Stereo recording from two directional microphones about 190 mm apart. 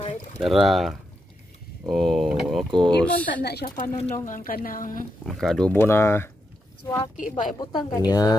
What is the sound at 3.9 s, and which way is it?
Speech, 35° left (ahead or behind).